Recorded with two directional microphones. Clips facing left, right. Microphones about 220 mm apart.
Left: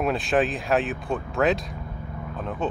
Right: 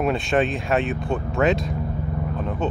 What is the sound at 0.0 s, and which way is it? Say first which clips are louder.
Speech: right 2 dB; centre (ahead or behind).